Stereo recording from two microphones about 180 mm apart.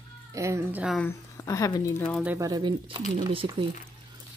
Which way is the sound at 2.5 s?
25° right (ahead or behind).